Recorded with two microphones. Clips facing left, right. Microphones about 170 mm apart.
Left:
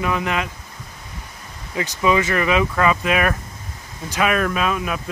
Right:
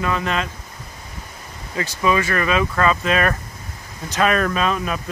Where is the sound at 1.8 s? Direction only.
15° left (ahead or behind).